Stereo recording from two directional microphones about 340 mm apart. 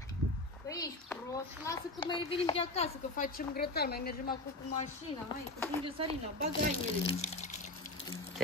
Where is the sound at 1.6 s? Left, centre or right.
Centre; by 4.3 s left.